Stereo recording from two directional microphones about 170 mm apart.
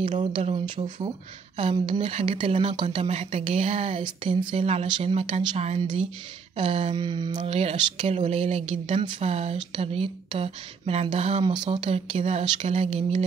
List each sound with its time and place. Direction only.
0.2 s speech: 35° right (ahead or behind)